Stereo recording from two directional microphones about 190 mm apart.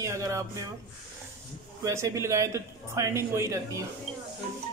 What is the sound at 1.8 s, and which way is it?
A woman's voice, 15° right (ahead or behind).